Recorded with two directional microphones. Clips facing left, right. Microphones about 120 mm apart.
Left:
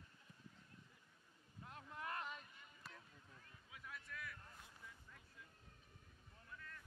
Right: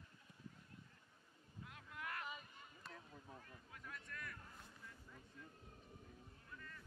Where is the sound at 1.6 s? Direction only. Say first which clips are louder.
Left 2 dB; 30° left (ahead or behind).